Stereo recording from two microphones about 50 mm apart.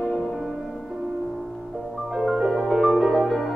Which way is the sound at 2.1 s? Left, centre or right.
Centre.